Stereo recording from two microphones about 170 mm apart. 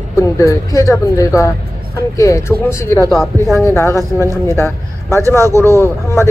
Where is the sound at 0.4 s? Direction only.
20° left (ahead or behind).